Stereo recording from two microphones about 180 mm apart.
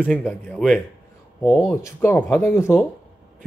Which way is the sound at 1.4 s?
15° left (ahead or behind).